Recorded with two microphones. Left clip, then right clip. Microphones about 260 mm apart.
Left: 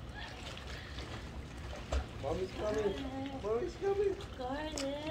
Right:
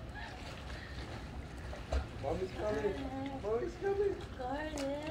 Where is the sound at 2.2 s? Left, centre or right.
Left.